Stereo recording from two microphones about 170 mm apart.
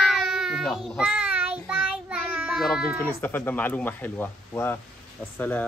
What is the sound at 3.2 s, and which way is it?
Speech, 10° left (ahead or behind).